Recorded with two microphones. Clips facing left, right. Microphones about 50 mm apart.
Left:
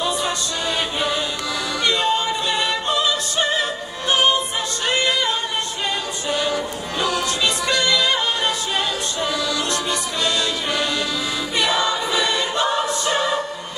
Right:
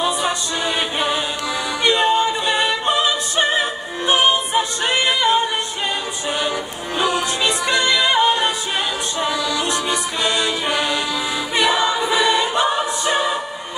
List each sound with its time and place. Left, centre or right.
0.0 s music: right
4.1 s a capella: right
6.2 s music: right
11.5 s choir: right